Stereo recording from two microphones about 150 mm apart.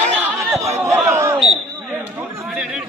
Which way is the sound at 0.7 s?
15° right (ahead or behind).